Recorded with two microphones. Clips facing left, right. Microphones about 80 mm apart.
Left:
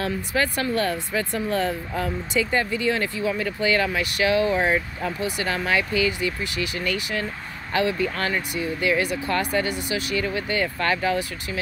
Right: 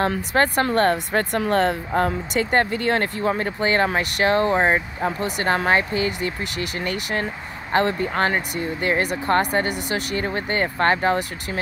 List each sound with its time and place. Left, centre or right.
0.0 s speech: right
7.7 s speech: right
10.2 s speech: right